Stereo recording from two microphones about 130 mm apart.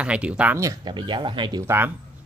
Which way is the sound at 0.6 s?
30° right (ahead or behind).